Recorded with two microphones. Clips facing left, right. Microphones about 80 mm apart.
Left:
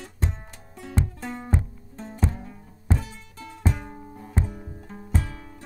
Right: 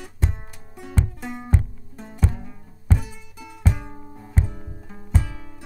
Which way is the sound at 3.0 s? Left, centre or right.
Centre.